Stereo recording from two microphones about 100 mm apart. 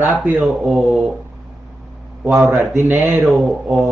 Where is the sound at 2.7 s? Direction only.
20° right (ahead or behind).